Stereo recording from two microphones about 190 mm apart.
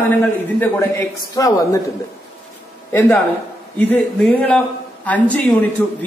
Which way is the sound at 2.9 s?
10° left (ahead or behind).